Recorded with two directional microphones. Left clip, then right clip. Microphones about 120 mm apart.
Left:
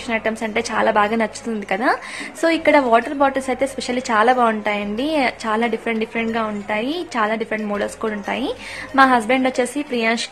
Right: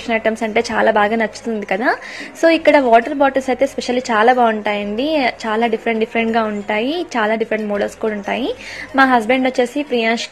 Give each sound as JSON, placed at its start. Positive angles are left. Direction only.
{"t": 0.1, "sound": "a woman's voice", "side_deg": -25}
{"t": 6.1, "sound": "a woman's voice", "side_deg": -25}
{"t": 7.7, "sound": "a woman's voice", "side_deg": -10}